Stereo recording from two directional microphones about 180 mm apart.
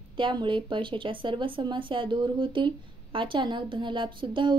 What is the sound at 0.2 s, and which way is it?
Speech, 25° right (ahead or behind).